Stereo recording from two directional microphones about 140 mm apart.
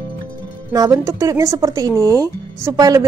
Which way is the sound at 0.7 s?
25° right (ahead or behind).